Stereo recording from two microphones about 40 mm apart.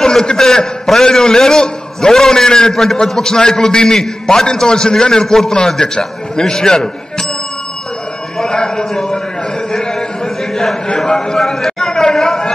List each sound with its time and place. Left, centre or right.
0.0 s a sound: centre
0.4 s a man's voice: centre
8.4 s a man's voice: centre
9.8 s a sound: centre
11.1 s a man's voice: centre
11.3 s chatter: centre